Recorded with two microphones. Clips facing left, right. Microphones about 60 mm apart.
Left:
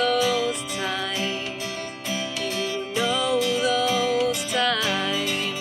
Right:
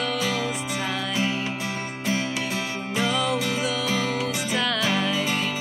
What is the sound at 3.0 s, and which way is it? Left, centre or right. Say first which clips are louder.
Music: left 1 dB; centre.